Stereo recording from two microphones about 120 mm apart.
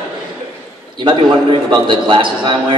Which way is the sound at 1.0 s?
40° right (ahead or behind).